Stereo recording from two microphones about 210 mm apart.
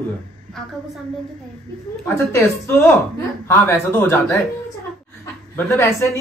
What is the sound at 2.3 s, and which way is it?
A man's voice, 15° left (ahead or behind).